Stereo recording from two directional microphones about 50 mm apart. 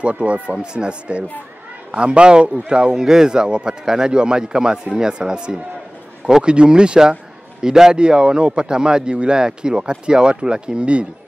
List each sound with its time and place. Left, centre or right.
0.0 s a man's voice: right